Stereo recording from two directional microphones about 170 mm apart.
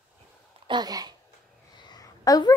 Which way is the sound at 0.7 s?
25° right (ahead or behind).